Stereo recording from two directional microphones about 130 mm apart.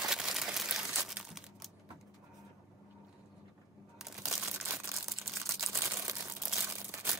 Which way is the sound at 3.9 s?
5° right (ahead or behind).